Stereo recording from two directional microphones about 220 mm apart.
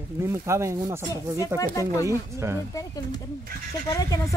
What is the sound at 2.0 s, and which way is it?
Speech, 10° right (ahead or behind).